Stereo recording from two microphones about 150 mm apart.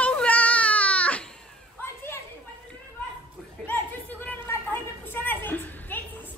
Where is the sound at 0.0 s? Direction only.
10° left (ahead or behind).